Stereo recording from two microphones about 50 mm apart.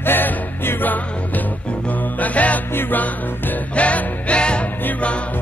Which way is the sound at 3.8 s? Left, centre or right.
Left.